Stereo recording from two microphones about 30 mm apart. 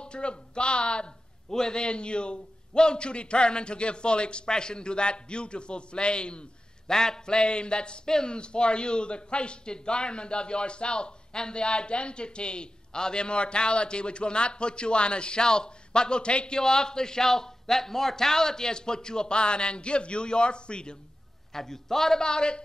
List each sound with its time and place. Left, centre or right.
0.0 s a man's voice: left
1.5 s a man's voice: left
6.9 s a man's voice: left
7.3 s a man's voice: left
16.5 s a man's voice: left
21.5 s a man's voice: centre